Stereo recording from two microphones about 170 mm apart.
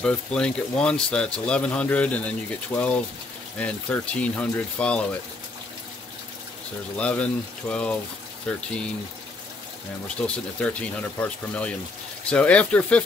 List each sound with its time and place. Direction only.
0.0 s speech: 5° left (ahead or behind)
7.0 s speech: 10° left (ahead or behind)
10.0 s speech: 5° left (ahead or behind)